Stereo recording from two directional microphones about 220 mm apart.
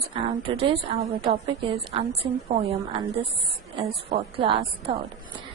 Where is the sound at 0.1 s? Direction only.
25° right (ahead or behind).